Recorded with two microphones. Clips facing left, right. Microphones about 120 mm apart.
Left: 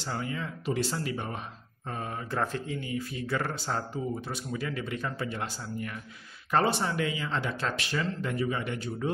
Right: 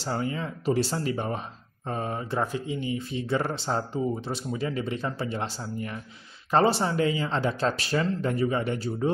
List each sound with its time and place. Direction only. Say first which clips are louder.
0.0 s speech: right 4 dB; 35° right (ahead or behind)
2.3 s speech: right 1 dB; 15° right (ahead or behind); by 9.1 s 35° right (ahead or behind)